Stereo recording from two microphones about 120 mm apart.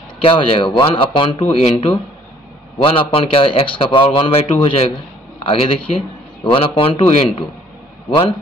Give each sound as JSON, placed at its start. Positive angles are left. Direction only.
{"t": 0.2, "sound": "a man's voice", "side_deg": 50}